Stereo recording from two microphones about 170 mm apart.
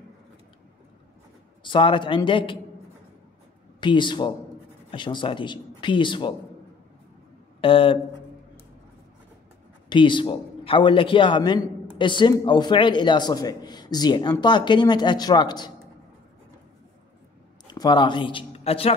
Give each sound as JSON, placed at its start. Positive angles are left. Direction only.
{"t": 1.6, "sound": "a man's voice", "side_deg": 30}
{"t": 3.8, "sound": "a man's voice", "side_deg": 30}
{"t": 7.6, "sound": "speech", "side_deg": 30}
{"t": 9.8, "sound": "a man's voice", "side_deg": 30}
{"t": 17.7, "sound": "speech", "side_deg": 25}